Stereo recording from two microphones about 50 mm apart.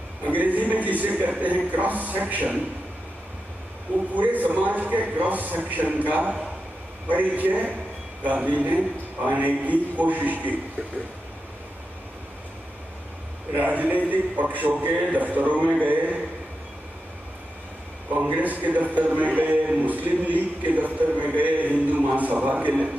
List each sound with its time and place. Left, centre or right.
0.3 s a man's voice: right
4.1 s a man's voice: right
13.5 s a man's voice: right
18.1 s a man's voice: right
20.2 s music: right